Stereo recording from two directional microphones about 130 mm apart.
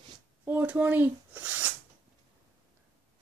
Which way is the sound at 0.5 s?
15° right (ahead or behind).